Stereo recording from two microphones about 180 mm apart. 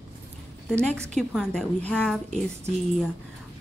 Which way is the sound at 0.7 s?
5° left (ahead or behind).